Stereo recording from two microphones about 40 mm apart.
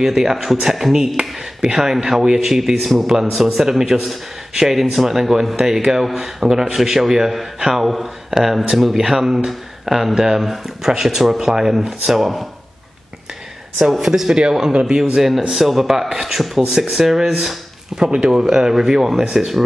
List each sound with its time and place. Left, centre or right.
0.0 s a man's voice: centre
14.0 s speech: centre
15.1 s a man's voice: centre